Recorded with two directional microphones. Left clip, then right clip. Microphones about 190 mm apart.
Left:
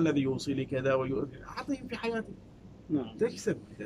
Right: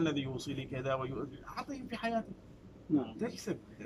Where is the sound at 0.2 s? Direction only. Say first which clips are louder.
Left 8 dB; 25° left (ahead or behind).